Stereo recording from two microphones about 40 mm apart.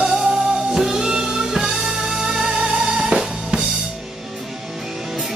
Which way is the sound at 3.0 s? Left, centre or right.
Centre.